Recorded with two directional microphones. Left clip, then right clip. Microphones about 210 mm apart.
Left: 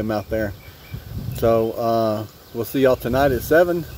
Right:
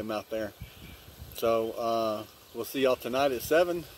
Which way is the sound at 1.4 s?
20° right (ahead or behind).